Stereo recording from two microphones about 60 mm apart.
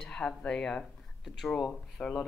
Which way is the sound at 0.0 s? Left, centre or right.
Centre.